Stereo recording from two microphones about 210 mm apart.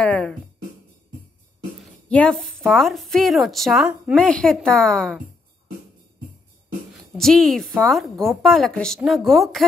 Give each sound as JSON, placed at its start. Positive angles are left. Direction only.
{"t": 0.0, "sound": "a woman's voice", "side_deg": 0}
{"t": 2.0, "sound": "a woman's voice", "side_deg": 5}
{"t": 7.2, "sound": "a woman's voice", "side_deg": 0}